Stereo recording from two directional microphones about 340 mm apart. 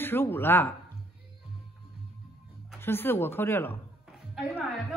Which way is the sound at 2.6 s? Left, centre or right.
Centre.